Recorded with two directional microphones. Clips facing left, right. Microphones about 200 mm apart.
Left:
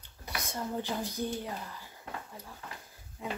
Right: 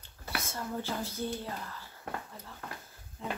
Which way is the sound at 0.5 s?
15° left (ahead or behind).